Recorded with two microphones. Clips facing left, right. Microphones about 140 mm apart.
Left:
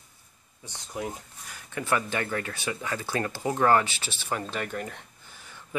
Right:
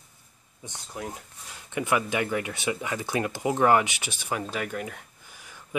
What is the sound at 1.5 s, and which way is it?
Speech, 20° right (ahead or behind).